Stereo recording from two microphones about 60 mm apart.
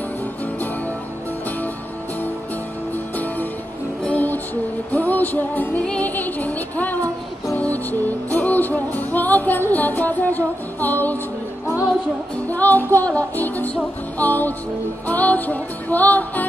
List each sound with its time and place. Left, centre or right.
4.0 s music: left
12.4 s music: left